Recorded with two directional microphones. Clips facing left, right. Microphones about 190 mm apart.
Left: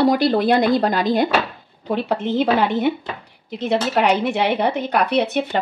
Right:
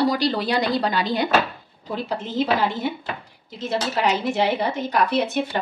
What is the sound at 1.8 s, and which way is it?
Speech, 65° left (ahead or behind).